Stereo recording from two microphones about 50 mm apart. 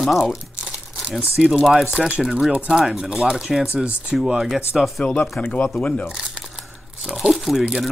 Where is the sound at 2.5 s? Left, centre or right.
Centre.